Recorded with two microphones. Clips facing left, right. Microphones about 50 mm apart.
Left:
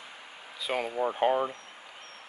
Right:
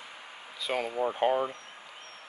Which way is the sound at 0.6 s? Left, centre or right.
Centre.